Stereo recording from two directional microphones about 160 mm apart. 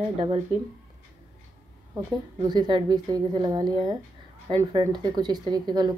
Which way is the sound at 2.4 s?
30° right (ahead or behind).